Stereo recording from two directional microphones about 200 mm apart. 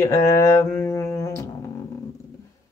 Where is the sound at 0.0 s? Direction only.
15° left (ahead or behind).